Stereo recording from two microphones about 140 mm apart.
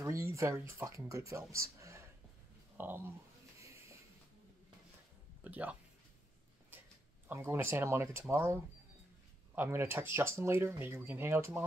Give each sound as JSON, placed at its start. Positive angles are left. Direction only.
{"t": 0.0, "sound": "speech", "side_deg": -20}
{"t": 1.5, "sound": "a sound", "side_deg": -20}
{"t": 2.8, "sound": "speech", "side_deg": -15}
{"t": 5.4, "sound": "speech", "side_deg": -10}
{"t": 7.2, "sound": "speech", "side_deg": -15}
{"t": 9.6, "sound": "speech", "side_deg": -15}